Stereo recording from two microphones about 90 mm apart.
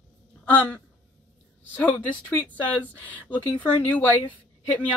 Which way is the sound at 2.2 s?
15° left (ahead or behind).